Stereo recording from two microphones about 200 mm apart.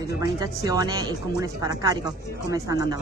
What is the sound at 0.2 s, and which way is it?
Speech, 20° right (ahead or behind).